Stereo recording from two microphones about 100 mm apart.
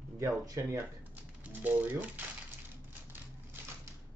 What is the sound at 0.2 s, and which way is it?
Speech, 35° right (ahead or behind).